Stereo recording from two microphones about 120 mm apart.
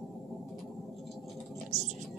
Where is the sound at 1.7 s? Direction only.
75° right (ahead or behind).